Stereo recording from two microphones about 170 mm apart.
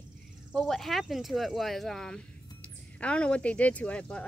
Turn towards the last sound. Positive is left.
turn(degrees=5)  # may be behind; listen again after turning